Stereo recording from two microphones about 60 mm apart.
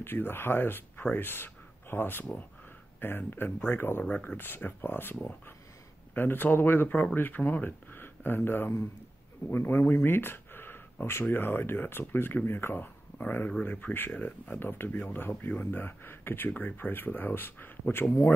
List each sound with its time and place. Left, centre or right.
0.0 s speech: left